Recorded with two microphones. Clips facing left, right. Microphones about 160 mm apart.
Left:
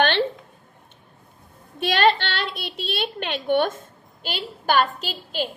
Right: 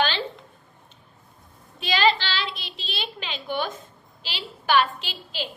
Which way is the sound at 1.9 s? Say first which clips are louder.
Left 2 dB; 55° left (ahead or behind).